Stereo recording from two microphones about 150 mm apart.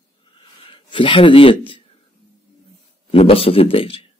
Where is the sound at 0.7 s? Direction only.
35° left (ahead or behind).